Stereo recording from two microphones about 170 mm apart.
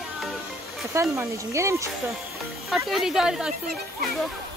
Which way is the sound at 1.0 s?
15° right (ahead or behind).